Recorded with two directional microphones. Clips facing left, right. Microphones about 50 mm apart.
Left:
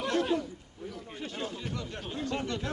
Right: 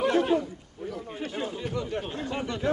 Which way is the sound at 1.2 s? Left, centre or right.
Centre.